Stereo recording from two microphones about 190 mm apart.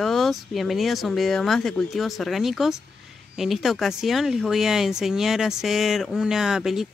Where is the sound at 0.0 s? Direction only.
Centre (ahead or behind).